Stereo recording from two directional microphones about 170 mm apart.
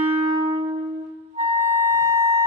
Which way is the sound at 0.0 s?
35° right (ahead or behind).